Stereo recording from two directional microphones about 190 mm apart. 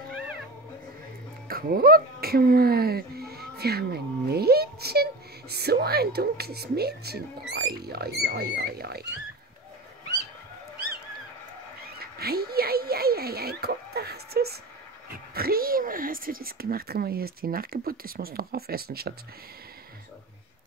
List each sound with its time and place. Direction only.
1.5 s speech: 50° right (ahead or behind)
12.0 s a sound: 55° right (ahead or behind)
15.0 s speech: 55° right (ahead or behind)